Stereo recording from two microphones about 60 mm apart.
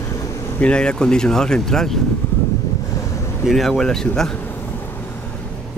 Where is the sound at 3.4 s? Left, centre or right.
Centre.